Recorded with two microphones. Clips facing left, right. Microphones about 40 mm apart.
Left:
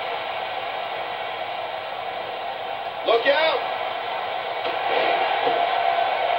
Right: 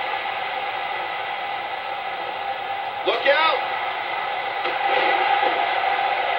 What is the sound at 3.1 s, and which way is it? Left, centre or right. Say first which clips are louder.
Speech: even; right.